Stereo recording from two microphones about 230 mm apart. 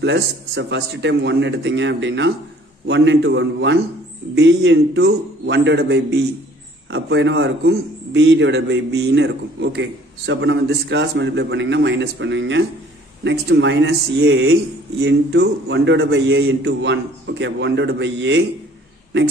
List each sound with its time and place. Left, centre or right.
0.0 s a man's voice: right